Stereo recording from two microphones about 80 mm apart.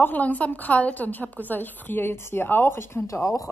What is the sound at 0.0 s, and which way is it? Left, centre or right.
A woman's voice, left.